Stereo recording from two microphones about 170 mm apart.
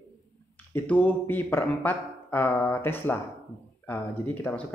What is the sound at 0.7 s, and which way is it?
Speech, 10° left (ahead or behind).